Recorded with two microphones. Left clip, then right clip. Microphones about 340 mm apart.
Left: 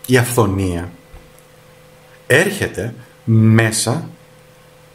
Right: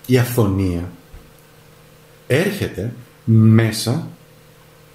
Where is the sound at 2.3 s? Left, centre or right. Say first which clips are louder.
Left 5 dB; left.